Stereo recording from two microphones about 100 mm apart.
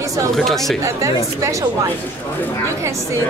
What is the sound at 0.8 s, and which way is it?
Speech, 30° right (ahead or behind).